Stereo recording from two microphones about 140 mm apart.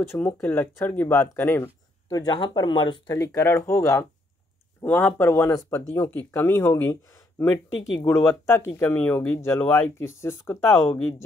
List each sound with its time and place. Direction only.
0.0 s speech: 15° left (ahead or behind)
2.0 s speech: 25° left (ahead or behind)